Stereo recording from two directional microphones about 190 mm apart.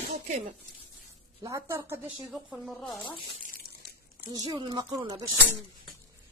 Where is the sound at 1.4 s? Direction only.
15° right (ahead or behind); by 3.0 s centre (ahead or behind).